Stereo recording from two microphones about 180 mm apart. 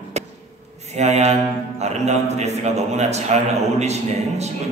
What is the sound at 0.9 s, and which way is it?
A man's voice, 40° right (ahead or behind).